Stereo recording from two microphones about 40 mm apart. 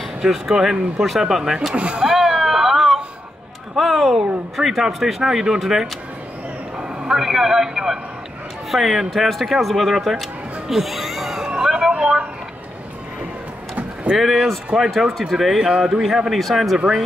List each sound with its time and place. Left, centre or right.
0.2 s speech: centre
1.8 s speech: right
2.0 s vehicle: centre
3.7 s a man's voice: centre
10.7 s a sound: centre
11.6 s vehicle: centre
12.0 s a sound: right
14.1 s speech: centre
15.0 s speech: centre
15.6 s speech: centre
16.3 s speech: centre